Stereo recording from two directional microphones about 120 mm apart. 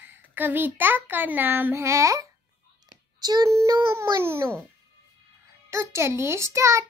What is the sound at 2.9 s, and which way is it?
Child singing, 35° right (ahead or behind).